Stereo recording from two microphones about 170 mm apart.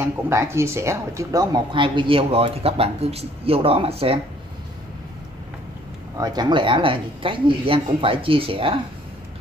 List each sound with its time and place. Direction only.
0.0 s speech: 15° right (ahead or behind); by 4.2 s 35° right (ahead or behind)
6.1 s speech: 20° right (ahead or behind)